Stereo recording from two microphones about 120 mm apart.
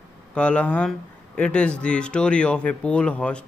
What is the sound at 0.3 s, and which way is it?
Speech, 10° left (ahead or behind).